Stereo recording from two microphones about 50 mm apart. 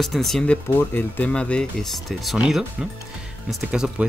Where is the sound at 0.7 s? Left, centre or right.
Left.